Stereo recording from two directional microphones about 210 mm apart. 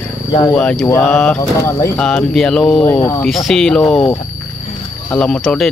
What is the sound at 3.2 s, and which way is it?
Speech, centre (ahead or behind).